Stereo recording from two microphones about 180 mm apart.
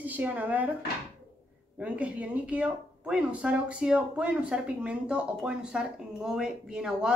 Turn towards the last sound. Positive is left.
turn(degrees=-5)  # may be behind; listen again after turning